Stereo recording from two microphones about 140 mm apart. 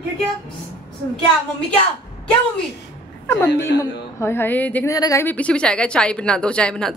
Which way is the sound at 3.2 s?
15° left (ahead or behind).